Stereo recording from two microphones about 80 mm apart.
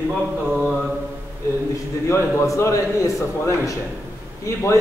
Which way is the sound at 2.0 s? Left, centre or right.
Left.